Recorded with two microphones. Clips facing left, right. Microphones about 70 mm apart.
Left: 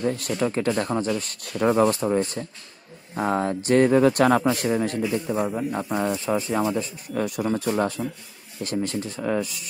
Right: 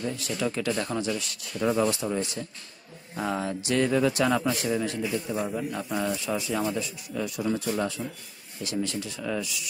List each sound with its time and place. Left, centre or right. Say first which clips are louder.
0.0 s speech: left 7 dB; left
0.3 s speech: left 2 dB; left
7.2 s speech: left 4 dB; left